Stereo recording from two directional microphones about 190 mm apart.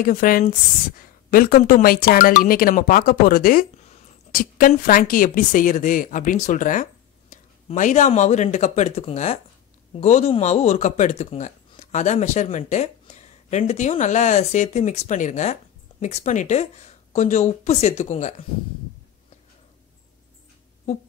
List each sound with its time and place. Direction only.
0.0 s a woman's voice: 45° left (ahead or behind)